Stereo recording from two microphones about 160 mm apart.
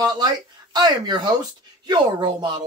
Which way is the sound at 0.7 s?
25° right (ahead or behind).